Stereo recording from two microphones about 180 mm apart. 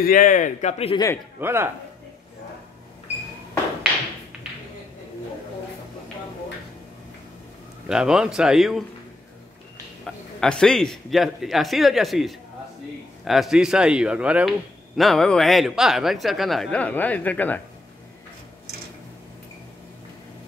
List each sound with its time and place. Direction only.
0.0 s a man's voice: 50° left (ahead or behind)
0.9 s a man's voice: 15° left (ahead or behind)
1.4 s a man's voice: 15° right (ahead or behind)
7.9 s speech: 5° right (ahead or behind)
10.0 s speech: 5° left (ahead or behind)